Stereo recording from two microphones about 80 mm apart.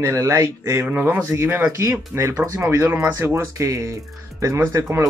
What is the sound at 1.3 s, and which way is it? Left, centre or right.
Speech, right.